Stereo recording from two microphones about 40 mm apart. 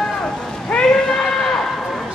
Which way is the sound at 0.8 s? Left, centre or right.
Centre.